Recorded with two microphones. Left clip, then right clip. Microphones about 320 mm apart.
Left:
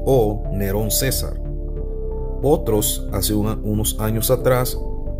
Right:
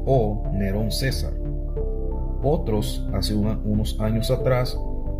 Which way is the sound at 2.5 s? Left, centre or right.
Left.